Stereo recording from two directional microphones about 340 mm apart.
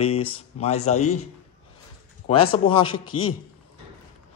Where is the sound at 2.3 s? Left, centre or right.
Centre.